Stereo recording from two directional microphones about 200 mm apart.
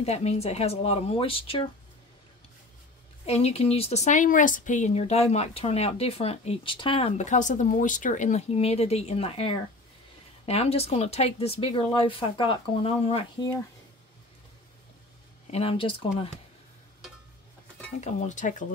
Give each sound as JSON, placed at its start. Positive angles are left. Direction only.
{"t": 0.0, "sound": "a woman's voice", "side_deg": 30}
{"t": 3.3, "sound": "a woman's voice", "side_deg": 30}
{"t": 15.5, "sound": "speech", "side_deg": 30}
{"t": 18.0, "sound": "a woman's voice", "side_deg": 35}